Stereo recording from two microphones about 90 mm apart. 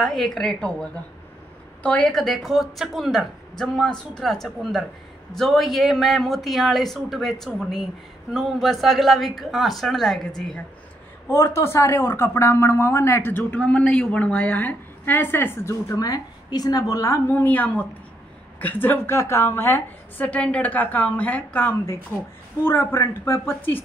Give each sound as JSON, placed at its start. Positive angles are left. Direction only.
{"t": 0.0, "sound": "a woman's voice", "side_deg": 5}
{"t": 11.2, "sound": "a woman's voice", "side_deg": 30}
{"t": 13.6, "sound": "a woman's voice", "side_deg": 10}
{"t": 17.3, "sound": "a woman's voice", "side_deg": 20}